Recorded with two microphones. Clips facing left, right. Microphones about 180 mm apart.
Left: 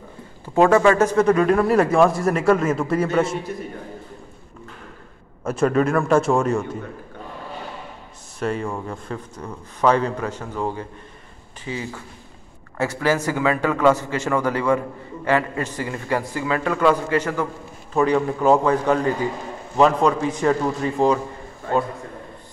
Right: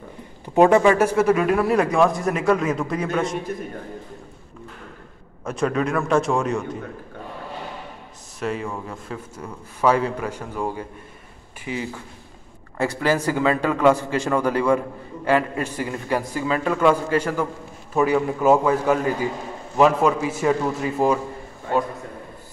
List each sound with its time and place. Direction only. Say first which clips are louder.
0.6 s a man's voice: even; 15° right (ahead or behind); by 3.3 s 5° left (ahead or behind)
5.4 s a man's voice: left 4 dB; 5° left (ahead or behind)
8.4 s a man's voice: left 2 dB; centre (ahead or behind)